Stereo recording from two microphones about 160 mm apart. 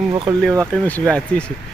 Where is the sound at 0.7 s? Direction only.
10° left (ahead or behind).